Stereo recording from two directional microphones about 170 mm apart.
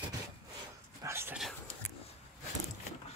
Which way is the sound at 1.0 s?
15° right (ahead or behind).